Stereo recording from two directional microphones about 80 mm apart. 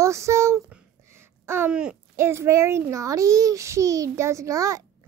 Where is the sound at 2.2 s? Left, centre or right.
Right.